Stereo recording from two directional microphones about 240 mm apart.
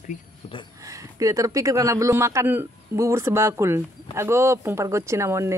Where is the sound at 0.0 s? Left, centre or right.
Left.